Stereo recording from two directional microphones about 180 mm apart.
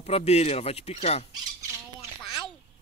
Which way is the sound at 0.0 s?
35° left (ahead or behind).